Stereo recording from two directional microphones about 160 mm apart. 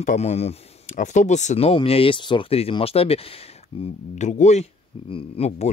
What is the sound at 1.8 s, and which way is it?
Speech, 35° left (ahead or behind).